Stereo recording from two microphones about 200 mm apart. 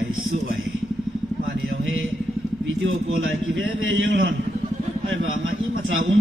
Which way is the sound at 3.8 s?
70° right (ahead or behind).